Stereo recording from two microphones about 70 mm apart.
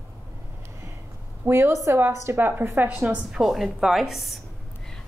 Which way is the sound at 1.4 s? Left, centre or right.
Right.